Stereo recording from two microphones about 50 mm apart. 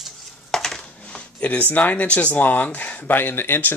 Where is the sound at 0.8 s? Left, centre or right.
Left.